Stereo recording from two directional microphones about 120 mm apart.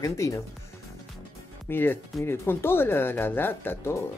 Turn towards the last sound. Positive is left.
turn(degrees=20)  # may be behind; listen again after turning